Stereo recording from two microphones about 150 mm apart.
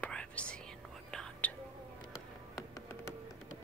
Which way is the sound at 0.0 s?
10° left (ahead or behind).